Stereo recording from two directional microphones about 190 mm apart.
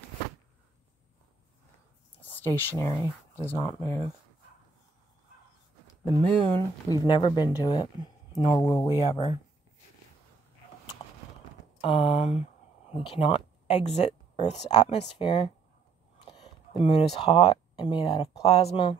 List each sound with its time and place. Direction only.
2.1 s speech: 10° left (ahead or behind)
6.3 s speech: 5° left (ahead or behind)
7.0 s speech: 25° left (ahead or behind)
8.8 s speech: 25° left (ahead or behind)
11.8 s speech: 30° left (ahead or behind)